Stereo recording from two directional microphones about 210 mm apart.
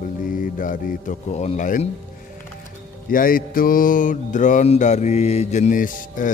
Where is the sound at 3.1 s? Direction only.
45° left (ahead or behind).